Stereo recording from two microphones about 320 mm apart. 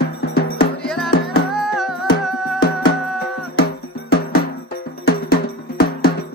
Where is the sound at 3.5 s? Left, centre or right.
Left.